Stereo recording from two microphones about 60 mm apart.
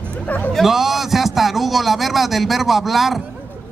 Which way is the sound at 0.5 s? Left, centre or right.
Centre.